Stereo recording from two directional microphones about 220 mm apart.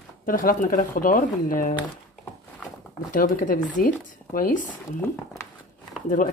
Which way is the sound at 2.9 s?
40° left (ahead or behind).